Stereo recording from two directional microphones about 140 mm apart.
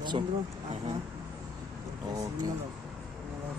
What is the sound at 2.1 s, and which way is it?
Speech, 25° right (ahead or behind).